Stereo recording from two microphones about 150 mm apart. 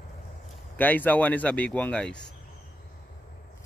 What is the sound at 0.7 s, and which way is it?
Speech, 10° left (ahead or behind).